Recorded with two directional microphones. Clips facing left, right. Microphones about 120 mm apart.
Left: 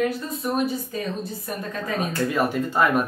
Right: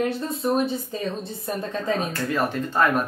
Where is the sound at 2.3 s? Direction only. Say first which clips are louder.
Even; 5° left (ahead or behind).